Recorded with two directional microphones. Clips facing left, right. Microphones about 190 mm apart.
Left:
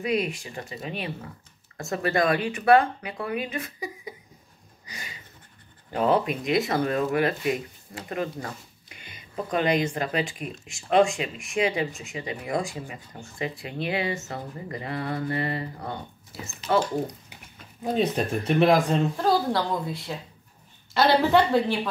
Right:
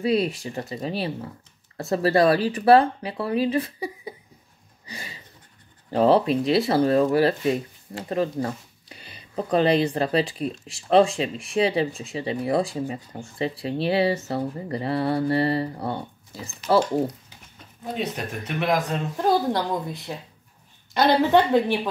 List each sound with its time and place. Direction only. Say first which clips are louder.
0.0 s speech: right 4 dB; 35° right (ahead or behind)
4.8 s a sound: right 4 dB; 30° right (ahead or behind)
5.9 s speech: right 5 dB; 30° right (ahead or behind)
17.9 s speech: left 5 dB; 30° left (ahead or behind)
19.2 s a woman's voice: right 6 dB; 20° right (ahead or behind)